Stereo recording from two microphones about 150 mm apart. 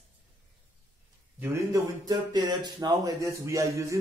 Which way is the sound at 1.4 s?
20° right (ahead or behind).